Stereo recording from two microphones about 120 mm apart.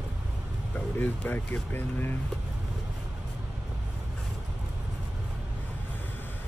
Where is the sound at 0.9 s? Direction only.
15° left (ahead or behind).